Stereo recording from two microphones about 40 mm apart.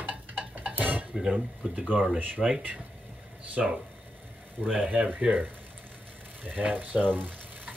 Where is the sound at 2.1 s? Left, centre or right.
Right.